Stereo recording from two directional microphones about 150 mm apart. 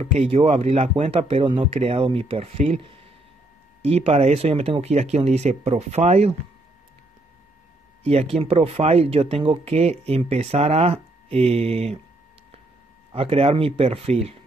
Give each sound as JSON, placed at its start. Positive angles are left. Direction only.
{"t": 0.0, "sound": "speech", "side_deg": -45}
{"t": 8.0, "sound": "speech", "side_deg": -45}
{"t": 13.1, "sound": "speech", "side_deg": -40}